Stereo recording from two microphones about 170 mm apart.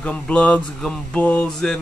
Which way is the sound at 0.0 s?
5° left (ahead or behind).